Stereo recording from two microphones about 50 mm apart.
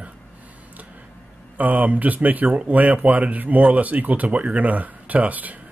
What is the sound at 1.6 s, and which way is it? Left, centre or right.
Speech, right.